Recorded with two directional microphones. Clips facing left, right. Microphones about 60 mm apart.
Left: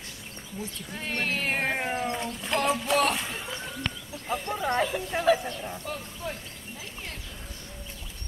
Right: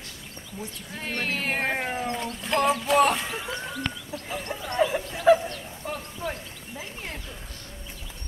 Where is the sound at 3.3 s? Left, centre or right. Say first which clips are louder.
Right 3 dB; centre.